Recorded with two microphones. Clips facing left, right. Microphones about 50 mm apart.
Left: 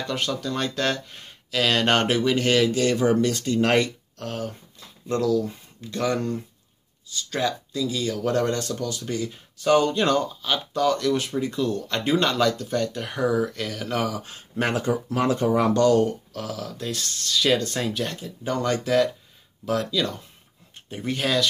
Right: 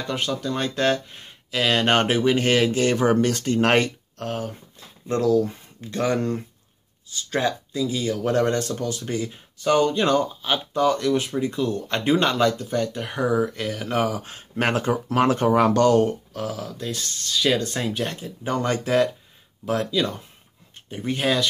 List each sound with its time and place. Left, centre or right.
0.0 s speech: centre; by 4.3 s right
4.3 s speech: centre
5.0 s speech: right
9.6 s speech: centre
10.4 s speech: centre
14.7 s speech: right
15.8 s speech: right
16.3 s speech: centre
16.7 s speech: centre
18.0 s speech: right